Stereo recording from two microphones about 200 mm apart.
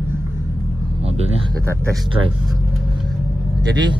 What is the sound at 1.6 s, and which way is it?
Speech, 15° right (ahead or behind).